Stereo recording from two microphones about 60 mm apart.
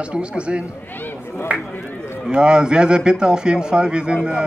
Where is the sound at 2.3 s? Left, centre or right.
Centre.